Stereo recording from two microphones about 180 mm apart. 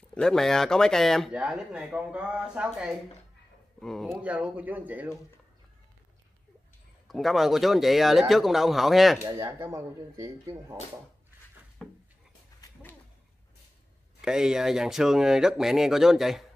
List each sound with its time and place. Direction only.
0.1 s speech: 5° left (ahead or behind)
7.1 s speech: centre (ahead or behind)
9.2 s speech: 15° right (ahead or behind)
12.5 s dog: 20° left (ahead or behind)
14.2 s speech: 5° right (ahead or behind)